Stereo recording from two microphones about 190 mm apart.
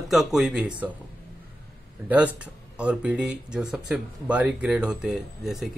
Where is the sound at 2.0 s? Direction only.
10° right (ahead or behind).